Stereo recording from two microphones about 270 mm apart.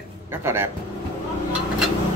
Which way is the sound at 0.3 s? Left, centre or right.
Centre.